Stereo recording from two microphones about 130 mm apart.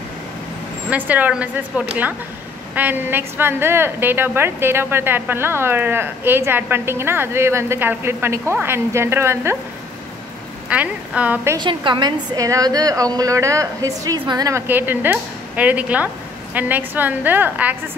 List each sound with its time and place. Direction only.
0.8 s a woman's voice: 10° right (ahead or behind)
10.7 s a woman's voice: 10° right (ahead or behind)
11.5 s a woman's voice: 35° right (ahead or behind)
14.7 s a woman's voice: 15° right (ahead or behind)